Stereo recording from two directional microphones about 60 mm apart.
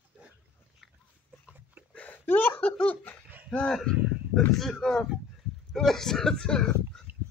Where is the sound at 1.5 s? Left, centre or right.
Right.